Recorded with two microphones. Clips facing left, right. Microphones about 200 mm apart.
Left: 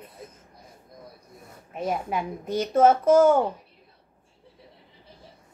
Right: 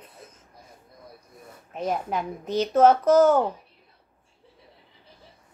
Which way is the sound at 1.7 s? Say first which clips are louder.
Even; 5° left (ahead or behind).